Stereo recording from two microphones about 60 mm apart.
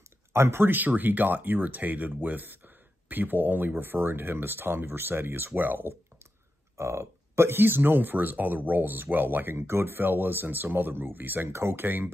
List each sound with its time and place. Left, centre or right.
0.3 s speech: right
6.8 s speech: right
11.4 s speech: right